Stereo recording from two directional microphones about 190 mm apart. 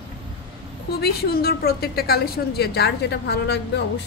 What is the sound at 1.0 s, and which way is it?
A woman's voice, 55° left (ahead or behind).